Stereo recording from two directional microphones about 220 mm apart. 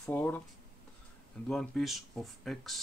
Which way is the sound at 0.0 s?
10° left (ahead or behind).